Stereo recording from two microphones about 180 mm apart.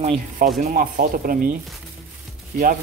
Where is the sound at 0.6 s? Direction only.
50° right (ahead or behind).